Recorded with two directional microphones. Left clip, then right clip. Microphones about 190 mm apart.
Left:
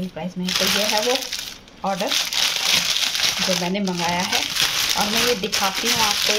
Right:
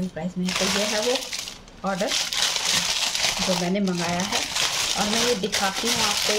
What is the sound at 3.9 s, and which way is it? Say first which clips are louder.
Speech: left 4 dB; 5° right (ahead or behind).